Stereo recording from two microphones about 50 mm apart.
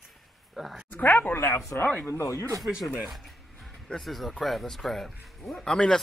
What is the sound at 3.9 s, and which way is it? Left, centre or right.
Speech, centre.